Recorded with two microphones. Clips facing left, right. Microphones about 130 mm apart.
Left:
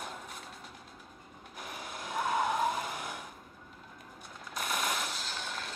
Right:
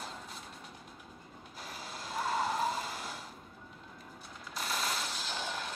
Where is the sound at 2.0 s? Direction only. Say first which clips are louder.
Left 2 dB; 55° left (ahead or behind).